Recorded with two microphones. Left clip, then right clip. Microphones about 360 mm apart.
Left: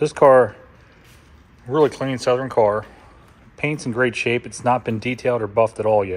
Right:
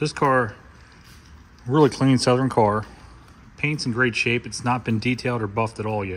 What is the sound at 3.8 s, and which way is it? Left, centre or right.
Speech, centre.